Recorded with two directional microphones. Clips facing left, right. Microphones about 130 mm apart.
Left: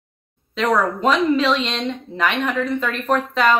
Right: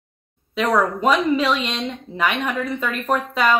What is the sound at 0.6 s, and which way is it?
Speech, 10° right (ahead or behind).